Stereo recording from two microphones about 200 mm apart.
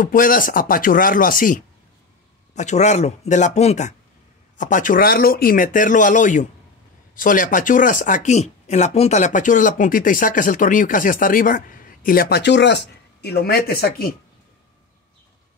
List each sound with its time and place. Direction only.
0.0 s speech: 45° left (ahead or behind)